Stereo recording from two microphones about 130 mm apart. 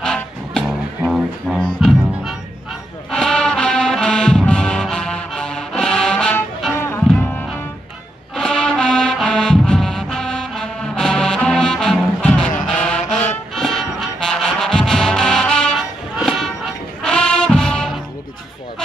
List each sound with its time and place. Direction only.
0.0 s music: 5° left (ahead or behind)
6.7 s music: 20° left (ahead or behind); by 18.0 s centre (ahead or behind)